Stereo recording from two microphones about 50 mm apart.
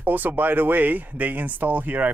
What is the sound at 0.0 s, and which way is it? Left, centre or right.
Speech, right.